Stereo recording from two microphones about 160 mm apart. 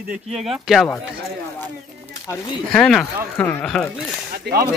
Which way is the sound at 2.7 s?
5° left (ahead or behind).